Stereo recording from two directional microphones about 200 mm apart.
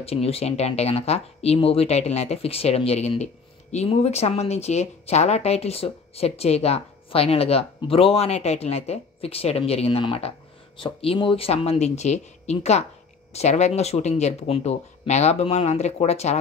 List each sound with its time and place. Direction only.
0.0 s speech: 30° left (ahead or behind)